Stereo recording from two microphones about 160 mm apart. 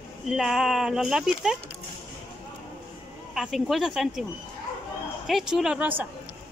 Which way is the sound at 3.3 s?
Centre (ahead or behind).